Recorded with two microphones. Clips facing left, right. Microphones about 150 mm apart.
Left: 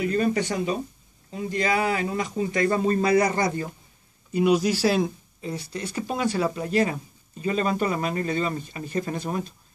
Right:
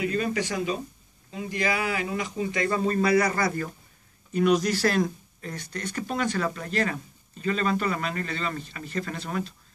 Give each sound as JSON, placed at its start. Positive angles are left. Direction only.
{"t": 0.0, "sound": "speech", "side_deg": 35}
{"t": 3.0, "sound": "a man's voice", "side_deg": 25}
{"t": 4.3, "sound": "speech", "side_deg": 10}